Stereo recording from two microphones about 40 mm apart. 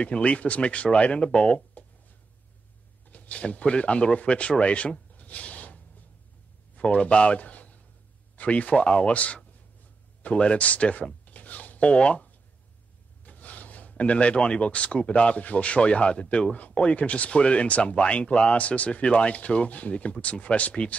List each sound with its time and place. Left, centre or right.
0.0 s speech: left
3.1 s a man's voice: left
13.2 s a sound: left
14.1 s speech: left